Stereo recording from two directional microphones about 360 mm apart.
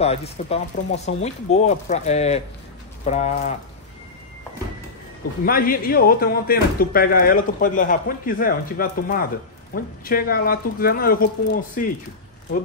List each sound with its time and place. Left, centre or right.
0.0 s speech: centre
5.4 s speech: left